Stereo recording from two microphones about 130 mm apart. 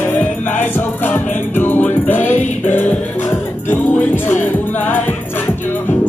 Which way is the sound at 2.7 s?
15° left (ahead or behind).